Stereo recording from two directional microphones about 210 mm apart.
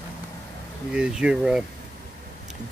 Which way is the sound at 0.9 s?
5° right (ahead or behind).